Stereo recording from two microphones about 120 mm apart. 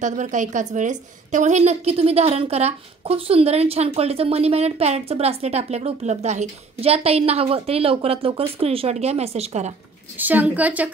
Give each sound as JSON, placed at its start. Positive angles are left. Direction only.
{"t": 0.0, "sound": "a woman's voice", "side_deg": -90}
{"t": 10.1, "sound": "a woman's voice", "side_deg": -15}